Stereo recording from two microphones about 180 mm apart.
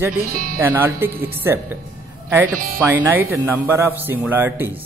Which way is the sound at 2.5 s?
50° right (ahead or behind).